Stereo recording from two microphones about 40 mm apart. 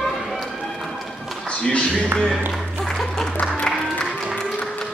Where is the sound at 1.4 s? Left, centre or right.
Centre.